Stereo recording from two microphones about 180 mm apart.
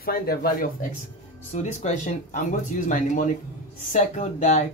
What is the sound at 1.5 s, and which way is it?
Speech, 40° left (ahead or behind).